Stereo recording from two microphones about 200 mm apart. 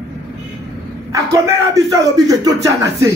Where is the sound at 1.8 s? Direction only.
15° right (ahead or behind).